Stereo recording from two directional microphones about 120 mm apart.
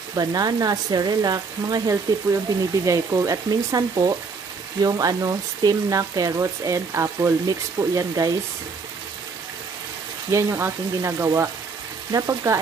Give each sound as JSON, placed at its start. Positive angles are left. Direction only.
{"t": 0.1, "sound": "speech", "side_deg": -30}
{"t": 10.3, "sound": "speech", "side_deg": -25}